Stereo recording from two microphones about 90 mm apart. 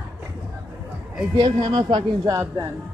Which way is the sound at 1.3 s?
50° right (ahead or behind).